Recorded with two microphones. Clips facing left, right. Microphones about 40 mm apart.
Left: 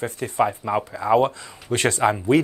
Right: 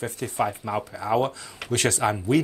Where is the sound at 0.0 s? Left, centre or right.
Left.